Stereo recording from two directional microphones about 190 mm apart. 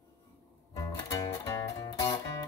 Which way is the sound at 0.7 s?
20° left (ahead or behind).